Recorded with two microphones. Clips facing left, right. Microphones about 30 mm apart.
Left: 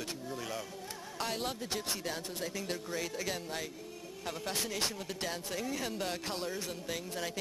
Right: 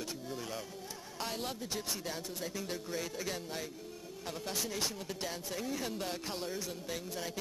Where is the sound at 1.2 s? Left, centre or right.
Centre.